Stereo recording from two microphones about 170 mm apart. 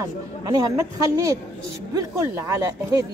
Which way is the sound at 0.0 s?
20° right (ahead or behind).